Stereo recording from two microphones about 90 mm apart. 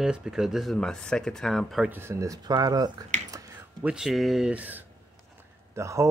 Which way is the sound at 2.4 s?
45° right (ahead or behind).